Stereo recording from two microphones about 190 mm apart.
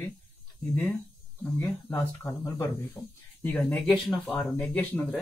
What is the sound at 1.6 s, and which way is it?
Speech, 10° left (ahead or behind).